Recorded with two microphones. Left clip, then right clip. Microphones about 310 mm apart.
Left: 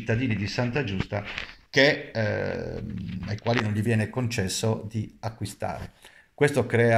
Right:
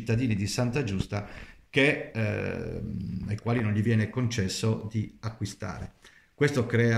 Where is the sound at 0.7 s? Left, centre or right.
Right.